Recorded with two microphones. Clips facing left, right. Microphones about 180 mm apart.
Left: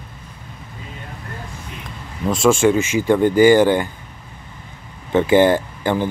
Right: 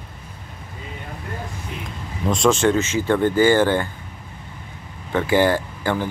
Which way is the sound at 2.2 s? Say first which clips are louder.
Left 3 dB; 5° left (ahead or behind).